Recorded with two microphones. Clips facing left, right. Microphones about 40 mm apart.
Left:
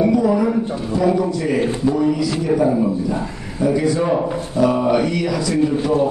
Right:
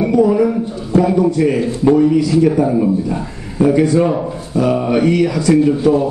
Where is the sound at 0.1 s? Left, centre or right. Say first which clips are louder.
Right 4 dB; right.